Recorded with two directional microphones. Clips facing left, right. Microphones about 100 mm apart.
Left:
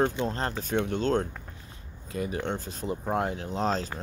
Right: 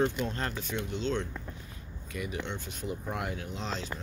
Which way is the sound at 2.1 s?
35° left (ahead or behind).